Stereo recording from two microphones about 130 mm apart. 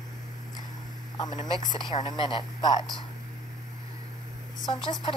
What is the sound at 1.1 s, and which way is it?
Speech, 30° left (ahead or behind).